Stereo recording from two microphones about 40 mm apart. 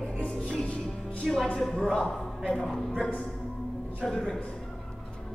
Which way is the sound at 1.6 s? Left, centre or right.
Centre.